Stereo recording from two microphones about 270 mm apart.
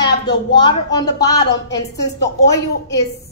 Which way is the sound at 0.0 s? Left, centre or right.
Centre.